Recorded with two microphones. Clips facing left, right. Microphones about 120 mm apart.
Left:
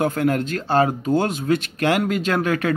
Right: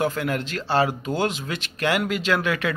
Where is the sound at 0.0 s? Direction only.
50° left (ahead or behind).